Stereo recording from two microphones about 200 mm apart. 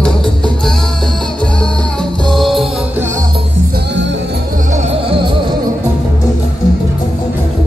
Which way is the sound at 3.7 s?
60° right (ahead or behind).